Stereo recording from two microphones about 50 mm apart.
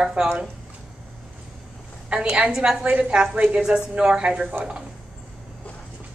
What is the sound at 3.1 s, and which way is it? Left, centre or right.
A woman's voice, centre.